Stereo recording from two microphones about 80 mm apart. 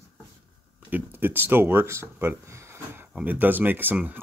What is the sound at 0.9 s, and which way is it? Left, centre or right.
Speech, right.